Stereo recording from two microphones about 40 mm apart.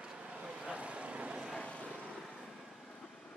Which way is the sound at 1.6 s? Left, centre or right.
Left.